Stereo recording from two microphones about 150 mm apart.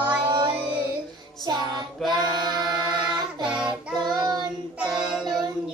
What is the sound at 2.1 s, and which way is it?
Singing, 30° right (ahead or behind).